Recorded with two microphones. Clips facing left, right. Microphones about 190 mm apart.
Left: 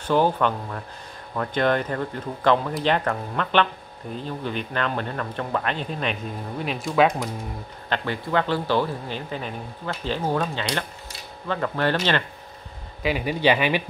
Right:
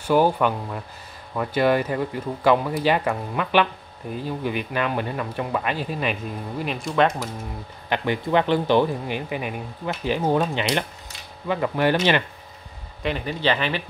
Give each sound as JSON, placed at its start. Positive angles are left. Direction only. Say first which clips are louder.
{"t": 0.0, "sound": "speech", "louder": "right 2 dB", "side_deg": -10}
{"t": 7.9, "sound": "speech", "louder": "right 3 dB", "side_deg": -15}
{"t": 13.0, "sound": "speech", "louder": "left 3 dB", "side_deg": 10}